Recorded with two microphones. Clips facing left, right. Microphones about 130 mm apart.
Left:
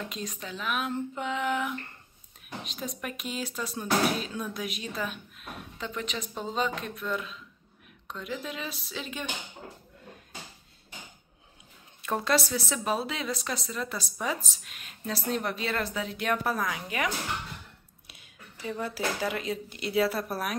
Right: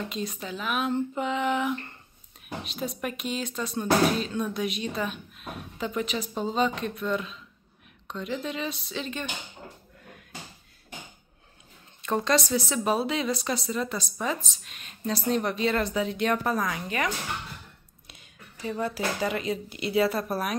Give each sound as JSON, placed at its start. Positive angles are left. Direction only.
{"t": 0.1, "sound": "speech", "side_deg": -5}
{"t": 12.0, "sound": "speech", "side_deg": 5}
{"t": 14.2, "sound": "speech", "side_deg": 10}